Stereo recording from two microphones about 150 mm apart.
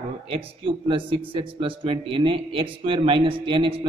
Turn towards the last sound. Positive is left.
turn(degrees=-35)  # may be behind; listen again after turning